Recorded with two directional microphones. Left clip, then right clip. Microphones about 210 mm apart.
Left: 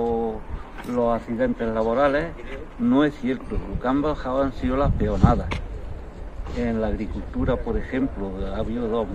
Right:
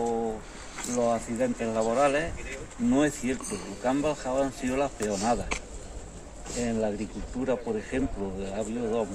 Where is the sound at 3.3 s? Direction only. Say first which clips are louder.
Left 4 dB; 20° right (ahead or behind).